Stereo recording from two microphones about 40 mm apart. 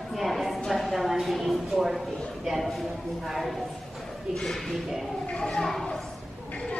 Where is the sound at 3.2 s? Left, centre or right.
Centre.